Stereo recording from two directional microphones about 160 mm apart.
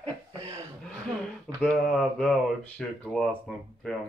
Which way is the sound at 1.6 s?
5° left (ahead or behind).